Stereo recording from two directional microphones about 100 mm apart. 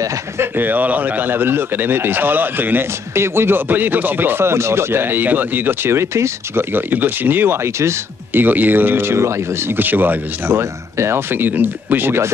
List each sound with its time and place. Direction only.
0.0 s speech: 30° right (ahead or behind)
0.6 s speech: 20° right (ahead or behind)